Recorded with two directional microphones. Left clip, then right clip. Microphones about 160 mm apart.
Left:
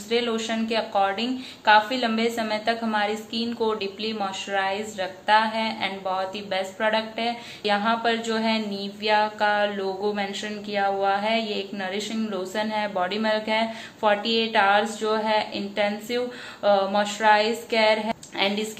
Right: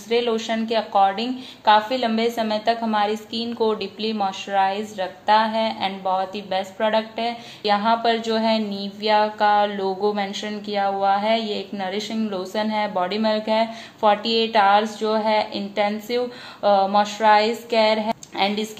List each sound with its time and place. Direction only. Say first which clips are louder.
0.1 s a woman's voice: right 4 dB; 40° right (ahead or behind)